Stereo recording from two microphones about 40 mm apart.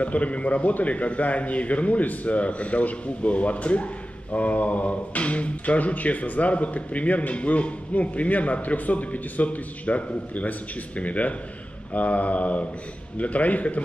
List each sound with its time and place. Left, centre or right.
0.0 s a man's voice: left